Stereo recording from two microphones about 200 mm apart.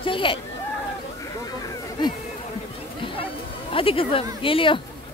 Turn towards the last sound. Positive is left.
turn(degrees=25)  # may be behind; listen again after turning